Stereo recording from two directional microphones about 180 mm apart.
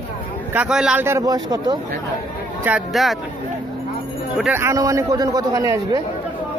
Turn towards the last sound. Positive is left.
turn(degrees=-20)  # may be behind; listen again after turning